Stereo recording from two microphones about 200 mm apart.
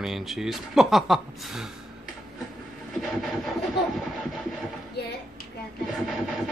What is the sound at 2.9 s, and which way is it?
Vehicle, centre (ahead or behind).